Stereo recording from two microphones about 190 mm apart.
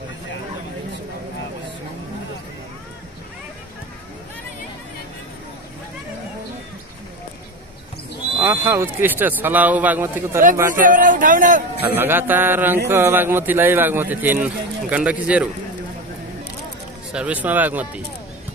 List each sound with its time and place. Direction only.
8.4 s a man's voice: 10° right (ahead or behind)
10.7 s speech: 45° right (ahead or behind)
11.8 s a man's voice: 10° right (ahead or behind)
17.1 s a man's voice: 5° right (ahead or behind)